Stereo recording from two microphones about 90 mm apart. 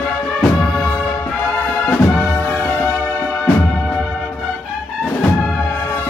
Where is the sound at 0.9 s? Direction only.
25° left (ahead or behind).